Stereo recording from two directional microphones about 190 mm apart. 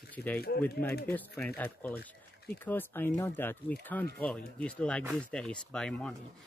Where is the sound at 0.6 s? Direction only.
10° left (ahead or behind).